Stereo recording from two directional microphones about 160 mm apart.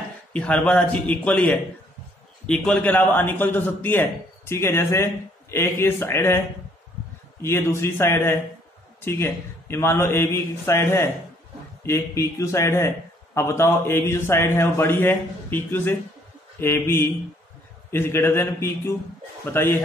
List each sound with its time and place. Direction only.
0.3 s a man's voice: 5° left (ahead or behind)
7.4 s a man's voice: 15° left (ahead or behind)